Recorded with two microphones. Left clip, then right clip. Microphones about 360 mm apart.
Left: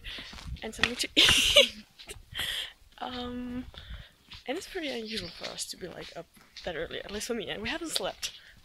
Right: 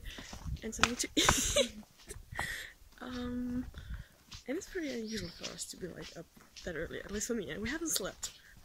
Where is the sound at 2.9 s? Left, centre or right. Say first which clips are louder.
Left 7 dB; left.